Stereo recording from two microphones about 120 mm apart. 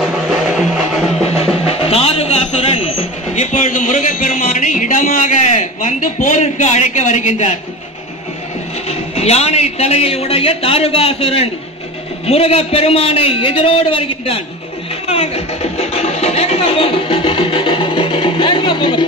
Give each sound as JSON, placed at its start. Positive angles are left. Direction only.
{"t": 0.0, "sound": "music", "side_deg": 0}
{"t": 1.6, "sound": "music", "side_deg": 55}
{"t": 3.3, "sound": "a sound", "side_deg": 85}
{"t": 8.8, "sound": "a man's voice", "side_deg": 60}
{"t": 15.0, "sound": "music", "side_deg": 60}